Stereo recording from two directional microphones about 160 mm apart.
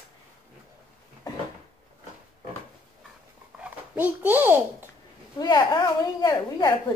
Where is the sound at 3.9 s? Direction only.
10° right (ahead or behind).